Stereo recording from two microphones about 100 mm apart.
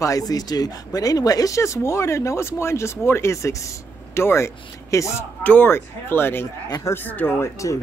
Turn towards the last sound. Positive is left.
turn(degrees=20)  # may be behind; listen again after turning